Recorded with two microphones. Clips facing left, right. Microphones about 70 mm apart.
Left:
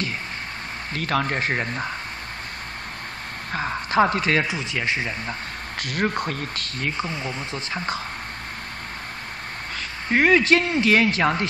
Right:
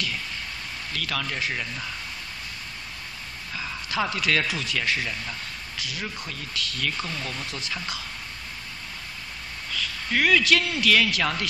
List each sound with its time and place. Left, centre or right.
0.9 s speech: left
3.5 s speech: left
5.8 s speech: left
9.7 s a man's voice: left